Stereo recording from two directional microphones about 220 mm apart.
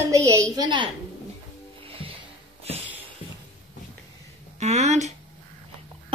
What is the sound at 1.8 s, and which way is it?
Music, 25° right (ahead or behind).